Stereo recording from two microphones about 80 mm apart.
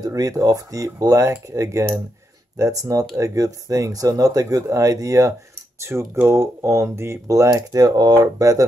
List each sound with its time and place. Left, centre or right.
0.0 s speech: right